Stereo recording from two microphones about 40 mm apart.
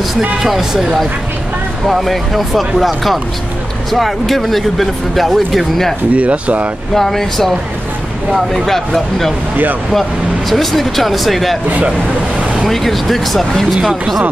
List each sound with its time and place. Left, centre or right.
0.4 s speech: centre
6.1 s speech: right
6.9 s speech: centre
8.6 s speech: centre
10.5 s speech: centre
12.6 s speech: centre